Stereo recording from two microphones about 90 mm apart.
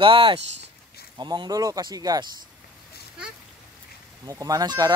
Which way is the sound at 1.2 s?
55° right (ahead or behind).